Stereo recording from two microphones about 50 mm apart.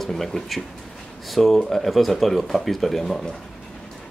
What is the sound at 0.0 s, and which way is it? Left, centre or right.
Speech, centre.